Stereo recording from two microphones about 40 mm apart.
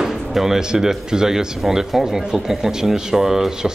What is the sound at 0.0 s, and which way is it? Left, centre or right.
Speech, centre.